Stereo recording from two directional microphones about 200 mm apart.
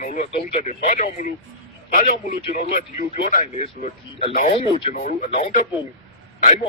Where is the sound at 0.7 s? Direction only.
35° left (ahead or behind).